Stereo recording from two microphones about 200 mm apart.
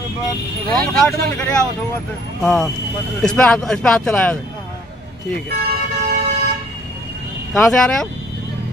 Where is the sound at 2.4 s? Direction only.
5° left (ahead or behind).